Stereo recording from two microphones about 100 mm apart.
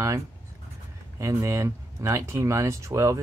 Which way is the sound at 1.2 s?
30° right (ahead or behind).